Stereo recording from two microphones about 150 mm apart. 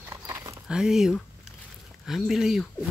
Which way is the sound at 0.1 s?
20° right (ahead or behind).